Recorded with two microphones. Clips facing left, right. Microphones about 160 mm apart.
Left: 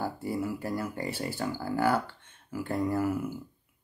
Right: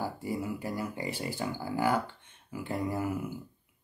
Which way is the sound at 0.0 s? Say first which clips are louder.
Left 2 dB; 10° right (ahead or behind).